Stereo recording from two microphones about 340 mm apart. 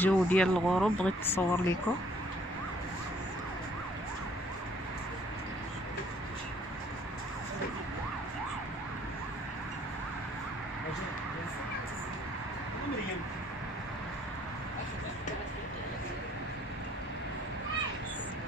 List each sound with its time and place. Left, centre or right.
0.0 s speech: centre